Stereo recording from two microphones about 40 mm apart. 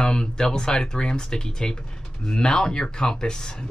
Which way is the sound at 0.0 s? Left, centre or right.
Centre.